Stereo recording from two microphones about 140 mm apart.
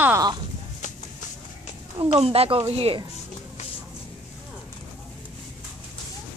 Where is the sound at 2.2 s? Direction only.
45° right (ahead or behind).